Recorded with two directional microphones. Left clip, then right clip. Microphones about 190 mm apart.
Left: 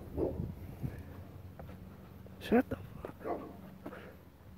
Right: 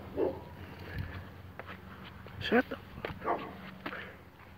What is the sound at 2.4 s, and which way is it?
Speech, 20° left (ahead or behind).